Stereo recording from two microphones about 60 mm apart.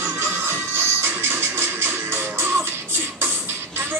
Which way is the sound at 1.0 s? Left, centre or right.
Right.